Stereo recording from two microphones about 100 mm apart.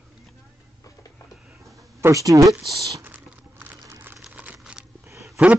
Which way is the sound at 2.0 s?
35° right (ahead or behind).